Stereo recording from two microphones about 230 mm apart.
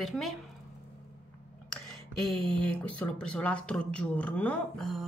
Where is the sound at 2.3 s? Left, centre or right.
Centre.